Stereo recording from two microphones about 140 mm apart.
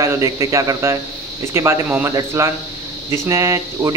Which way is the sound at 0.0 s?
20° right (ahead or behind).